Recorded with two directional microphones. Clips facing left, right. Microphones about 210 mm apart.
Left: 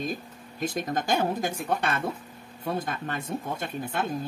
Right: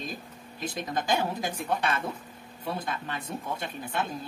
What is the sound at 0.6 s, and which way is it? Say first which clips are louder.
Speech: left 3 dB; 45° left (ahead or behind).